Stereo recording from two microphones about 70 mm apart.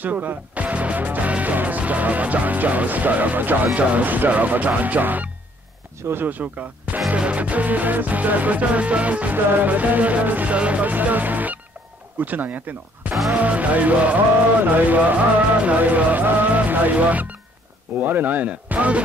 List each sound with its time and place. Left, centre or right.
0.0 s speech: right
5.9 s speech: right
13.1 s music: centre
13.4 s speech: right